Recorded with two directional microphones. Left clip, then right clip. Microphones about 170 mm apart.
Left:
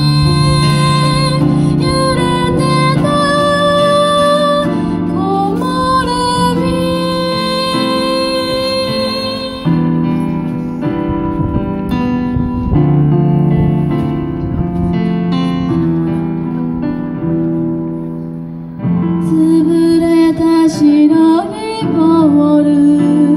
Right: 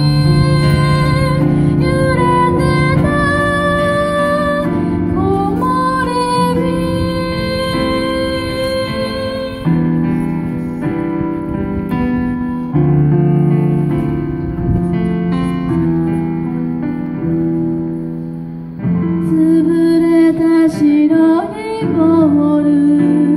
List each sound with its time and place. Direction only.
0.3 s music: 30° left (ahead or behind)
9.7 s music: 30° left (ahead or behind)
12.7 s music: 30° left (ahead or behind)
20.1 s music: 30° left (ahead or behind)